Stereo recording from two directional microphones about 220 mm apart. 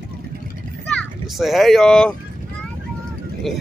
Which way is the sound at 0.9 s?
Centre (ahead or behind).